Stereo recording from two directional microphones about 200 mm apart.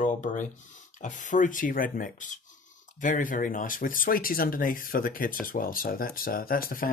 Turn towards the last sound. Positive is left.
turn(degrees=45)  # may be behind; listen again after turning